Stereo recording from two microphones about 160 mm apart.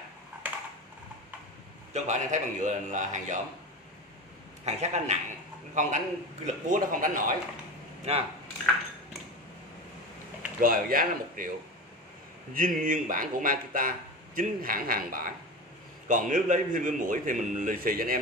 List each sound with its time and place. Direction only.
2.0 s a man's voice: 50° right (ahead or behind)
4.6 s a man's voice: 45° right (ahead or behind)
8.1 s speech: 40° right (ahead or behind)
10.6 s speech: 60° right (ahead or behind)
12.5 s a man's voice: 55° right (ahead or behind)